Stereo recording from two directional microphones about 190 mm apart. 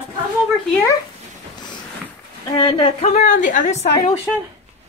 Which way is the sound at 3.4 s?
40° left (ahead or behind).